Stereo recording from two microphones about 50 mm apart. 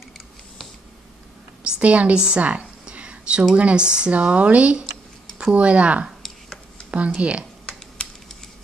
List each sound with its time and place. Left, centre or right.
1.6 s a sound: right
3.5 s a woman's voice: right
4.1 s speech: right
6.2 s tick-tock: centre
7.2 s speech: right